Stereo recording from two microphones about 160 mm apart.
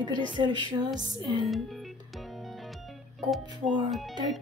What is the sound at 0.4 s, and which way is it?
Music, 30° right (ahead or behind).